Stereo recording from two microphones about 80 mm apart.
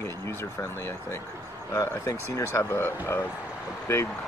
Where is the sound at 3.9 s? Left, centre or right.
Left.